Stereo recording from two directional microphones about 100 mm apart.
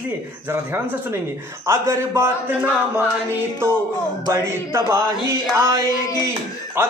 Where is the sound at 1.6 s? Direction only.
25° right (ahead or behind).